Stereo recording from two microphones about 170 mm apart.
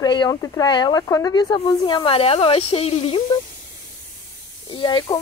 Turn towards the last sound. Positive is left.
turn(degrees=25)  # may be behind; listen again after turning